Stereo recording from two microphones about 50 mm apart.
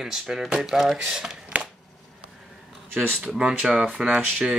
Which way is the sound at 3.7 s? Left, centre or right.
Right.